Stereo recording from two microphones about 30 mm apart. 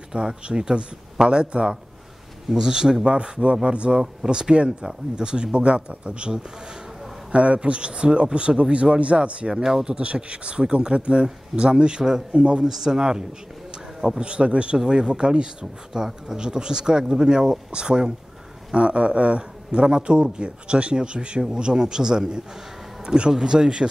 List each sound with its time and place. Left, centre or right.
0.1 s speech: right
2.5 s speech: right
3.6 s speech: right
4.0 s speech: right
7.3 s speech: right
9.5 s speech: centre
9.8 s speech: right
12.6 s speech: centre
14.2 s speech: right
14.8 s speech: right
15.9 s speech: right